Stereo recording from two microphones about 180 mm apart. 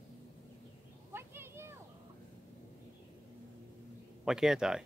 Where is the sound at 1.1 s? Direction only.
15° right (ahead or behind).